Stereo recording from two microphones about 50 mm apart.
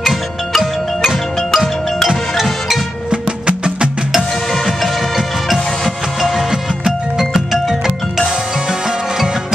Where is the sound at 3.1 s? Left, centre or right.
Right.